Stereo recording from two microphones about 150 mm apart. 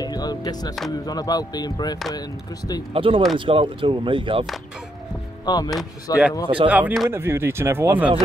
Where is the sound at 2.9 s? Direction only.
35° right (ahead or behind).